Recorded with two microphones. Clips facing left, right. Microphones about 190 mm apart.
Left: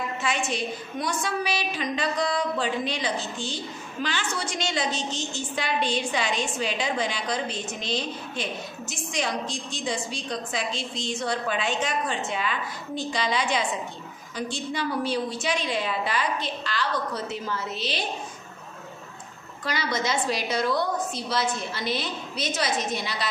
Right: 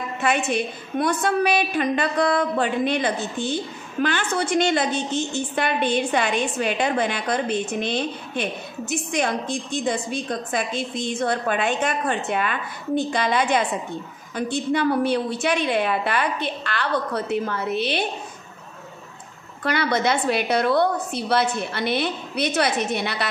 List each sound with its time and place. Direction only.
0.2 s a woman's voice: 60° right (ahead or behind)
19.6 s a woman's voice: 60° right (ahead or behind)